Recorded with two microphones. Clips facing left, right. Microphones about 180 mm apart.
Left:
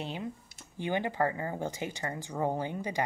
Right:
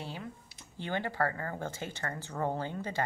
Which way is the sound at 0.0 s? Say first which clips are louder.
Left 5 dB; 20° left (ahead or behind).